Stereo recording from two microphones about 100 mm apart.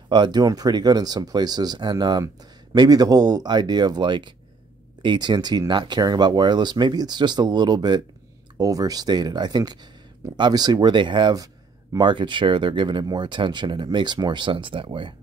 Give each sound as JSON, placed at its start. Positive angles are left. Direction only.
{"t": 0.1, "sound": "speech", "side_deg": -45}